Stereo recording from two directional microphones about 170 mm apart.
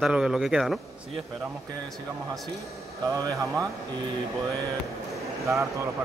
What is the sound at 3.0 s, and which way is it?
Speech, 20° right (ahead or behind).